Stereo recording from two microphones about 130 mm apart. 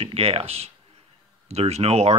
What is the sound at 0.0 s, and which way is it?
Speech, 50° right (ahead or behind).